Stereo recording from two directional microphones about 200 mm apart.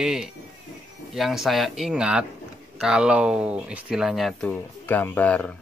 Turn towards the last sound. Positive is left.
turn(degrees=5)  # may be behind; listen again after turning